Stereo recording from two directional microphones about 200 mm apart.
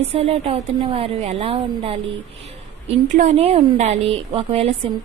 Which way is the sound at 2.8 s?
40° right (ahead or behind).